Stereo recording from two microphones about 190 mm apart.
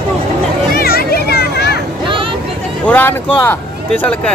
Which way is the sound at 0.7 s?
55° left (ahead or behind).